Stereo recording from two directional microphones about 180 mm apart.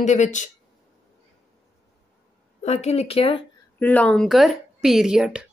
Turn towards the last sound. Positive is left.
turn(degrees=-5)  # may be behind; listen again after turning